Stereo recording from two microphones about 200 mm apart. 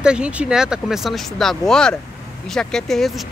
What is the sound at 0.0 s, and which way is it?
Speech, 5° right (ahead or behind).